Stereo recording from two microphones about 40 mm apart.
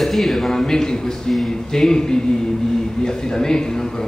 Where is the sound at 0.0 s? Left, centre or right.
Centre.